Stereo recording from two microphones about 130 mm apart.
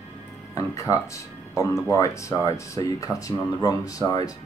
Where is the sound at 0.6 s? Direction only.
25° left (ahead or behind).